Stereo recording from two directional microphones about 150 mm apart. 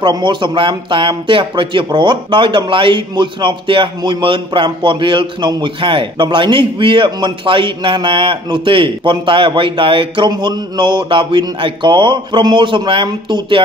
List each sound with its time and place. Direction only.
0.0 s speech: 30° right (ahead or behind)